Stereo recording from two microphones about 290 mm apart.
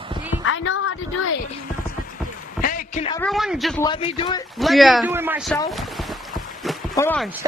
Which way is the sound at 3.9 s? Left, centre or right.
Centre.